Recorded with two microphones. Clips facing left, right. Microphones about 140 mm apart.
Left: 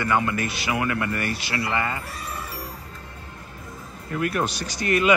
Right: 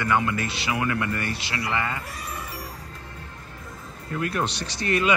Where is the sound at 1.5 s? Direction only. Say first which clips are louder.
Left 2 dB; 30° left (ahead or behind).